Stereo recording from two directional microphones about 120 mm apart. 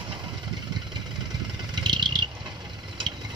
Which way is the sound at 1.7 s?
40° right (ahead or behind).